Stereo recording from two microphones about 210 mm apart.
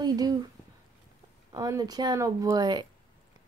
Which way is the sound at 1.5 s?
15° right (ahead or behind).